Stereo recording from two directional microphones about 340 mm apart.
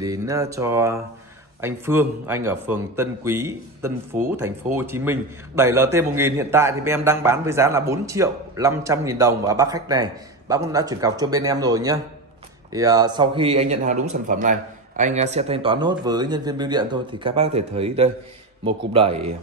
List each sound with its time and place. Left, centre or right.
0.0 s a man's voice: centre